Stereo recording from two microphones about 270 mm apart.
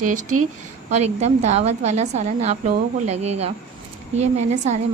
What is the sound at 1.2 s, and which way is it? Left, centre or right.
A woman's voice, right.